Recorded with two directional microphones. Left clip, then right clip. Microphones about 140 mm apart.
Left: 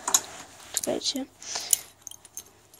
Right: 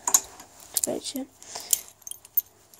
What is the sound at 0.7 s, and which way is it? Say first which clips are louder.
Speech: left 2 dB; 10° right (ahead or behind).